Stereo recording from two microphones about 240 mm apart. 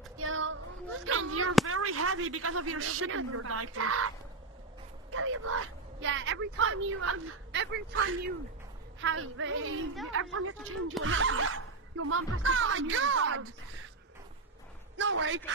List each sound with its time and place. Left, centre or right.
0.2 s child singing: right
1.0 s a sound: right
1.7 s a woman's voice: right
5.1 s speech: right
7.9 s speech: right
9.0 s speech: right
15.0 s a man's voice: right